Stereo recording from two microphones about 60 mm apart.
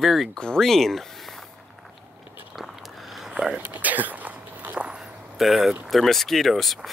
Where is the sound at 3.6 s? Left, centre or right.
Right.